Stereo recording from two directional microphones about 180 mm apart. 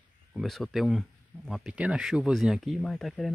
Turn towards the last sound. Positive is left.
turn(degrees=0)  # may be behind; listen again after turning